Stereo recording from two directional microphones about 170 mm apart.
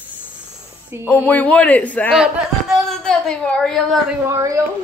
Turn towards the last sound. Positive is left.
turn(degrees=-20)  # may be behind; listen again after turning